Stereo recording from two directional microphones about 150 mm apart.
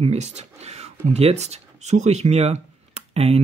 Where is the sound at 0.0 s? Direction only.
45° right (ahead or behind).